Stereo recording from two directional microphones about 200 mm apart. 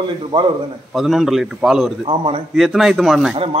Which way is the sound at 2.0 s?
25° right (ahead or behind).